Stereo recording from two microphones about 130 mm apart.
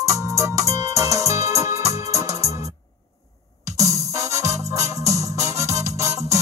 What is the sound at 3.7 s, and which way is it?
Music, 25° right (ahead or behind).